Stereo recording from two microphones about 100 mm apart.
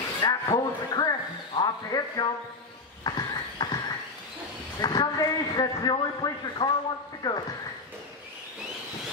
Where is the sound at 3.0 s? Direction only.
45° left (ahead or behind).